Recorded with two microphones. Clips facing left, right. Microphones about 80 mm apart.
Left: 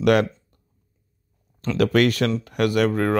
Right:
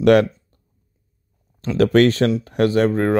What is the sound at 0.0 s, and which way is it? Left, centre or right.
Speech, right.